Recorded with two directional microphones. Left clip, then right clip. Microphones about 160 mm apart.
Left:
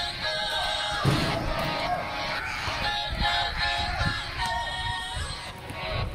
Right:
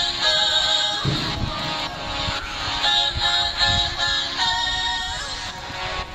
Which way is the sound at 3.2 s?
25° right (ahead or behind).